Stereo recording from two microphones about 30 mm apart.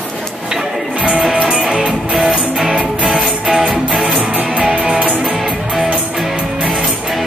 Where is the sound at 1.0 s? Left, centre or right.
Right.